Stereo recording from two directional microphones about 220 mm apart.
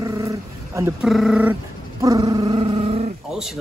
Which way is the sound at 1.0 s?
Centre (ahead or behind).